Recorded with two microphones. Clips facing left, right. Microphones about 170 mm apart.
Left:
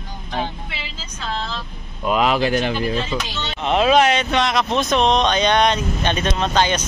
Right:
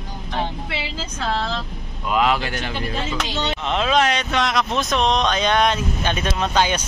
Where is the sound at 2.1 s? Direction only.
20° left (ahead or behind).